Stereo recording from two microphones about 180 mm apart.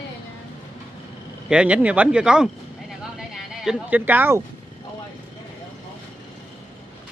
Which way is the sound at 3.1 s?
5° right (ahead or behind).